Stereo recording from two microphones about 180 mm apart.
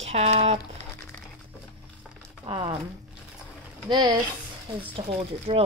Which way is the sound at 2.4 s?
30° right (ahead or behind).